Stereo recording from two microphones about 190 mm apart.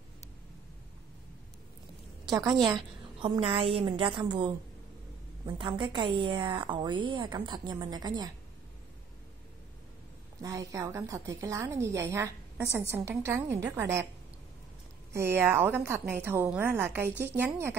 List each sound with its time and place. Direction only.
2.6 s a woman's voice: 25° right (ahead or behind)
5.6 s a woman's voice: 25° right (ahead or behind)
10.4 s a woman's voice: 15° right (ahead or behind)
15.1 s a woman's voice: 10° right (ahead or behind)